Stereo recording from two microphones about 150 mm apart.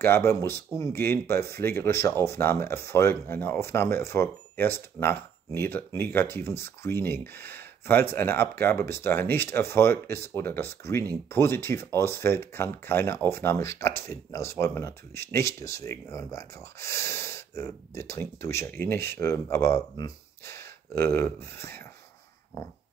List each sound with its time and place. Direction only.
0.0 s speech: 15° left (ahead or behind)